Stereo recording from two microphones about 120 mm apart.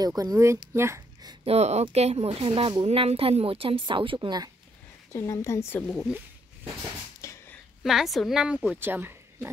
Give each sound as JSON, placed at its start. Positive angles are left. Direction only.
{"t": 0.0, "sound": "speech", "side_deg": -30}
{"t": 1.4, "sound": "speech", "side_deg": -60}
{"t": 5.1, "sound": "speech", "side_deg": 25}
{"t": 7.2, "sound": "a sound", "side_deg": 25}
{"t": 7.8, "sound": "a woman's voice", "side_deg": 0}
{"t": 8.7, "sound": "speech", "side_deg": -20}